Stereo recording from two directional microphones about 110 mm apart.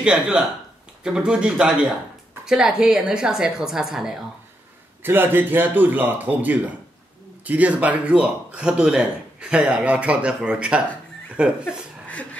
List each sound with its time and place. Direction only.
0.0 s a woman's voice: 5° right (ahead or behind)
5.0 s speech: 20° right (ahead or behind)